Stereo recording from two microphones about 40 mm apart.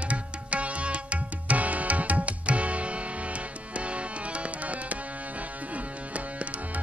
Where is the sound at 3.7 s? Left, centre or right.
Right.